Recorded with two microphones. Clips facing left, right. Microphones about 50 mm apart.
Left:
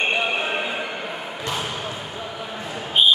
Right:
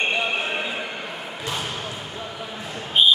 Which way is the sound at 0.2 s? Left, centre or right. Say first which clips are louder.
Left 1 dB; centre.